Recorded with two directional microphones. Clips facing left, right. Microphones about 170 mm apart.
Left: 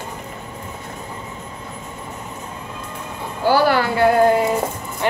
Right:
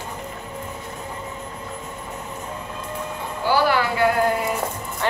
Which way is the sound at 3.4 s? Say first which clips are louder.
Left 4 dB; 40° left (ahead or behind).